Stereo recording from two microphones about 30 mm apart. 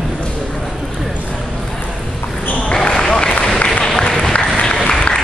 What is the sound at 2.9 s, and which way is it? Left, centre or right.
Run, left.